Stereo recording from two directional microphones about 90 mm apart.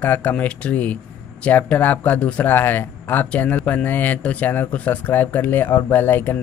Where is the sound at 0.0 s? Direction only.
20° left (ahead or behind).